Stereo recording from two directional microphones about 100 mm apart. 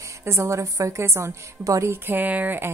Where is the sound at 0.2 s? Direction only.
25° right (ahead or behind).